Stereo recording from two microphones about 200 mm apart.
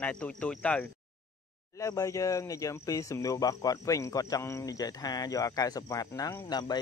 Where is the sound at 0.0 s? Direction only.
5° left (ahead or behind).